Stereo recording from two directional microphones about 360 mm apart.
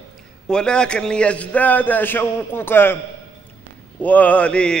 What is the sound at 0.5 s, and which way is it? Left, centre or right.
A man's voice, centre.